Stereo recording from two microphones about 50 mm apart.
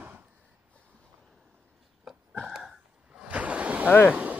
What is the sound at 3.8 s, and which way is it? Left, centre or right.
Speech, left.